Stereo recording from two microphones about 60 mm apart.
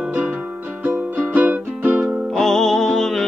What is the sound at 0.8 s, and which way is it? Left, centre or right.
Music, right.